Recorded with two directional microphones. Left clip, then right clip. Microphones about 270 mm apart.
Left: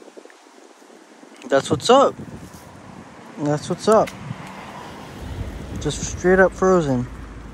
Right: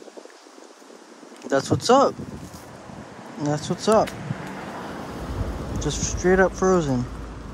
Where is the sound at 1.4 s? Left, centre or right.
Centre.